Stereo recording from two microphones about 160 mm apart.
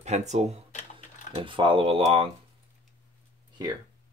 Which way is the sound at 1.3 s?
30° right (ahead or behind).